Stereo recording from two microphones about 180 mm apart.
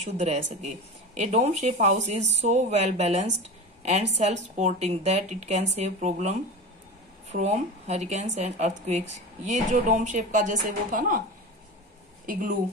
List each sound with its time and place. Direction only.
0.2 s a woman's voice: 40° right (ahead or behind)
12.3 s a woman's voice: 50° right (ahead or behind)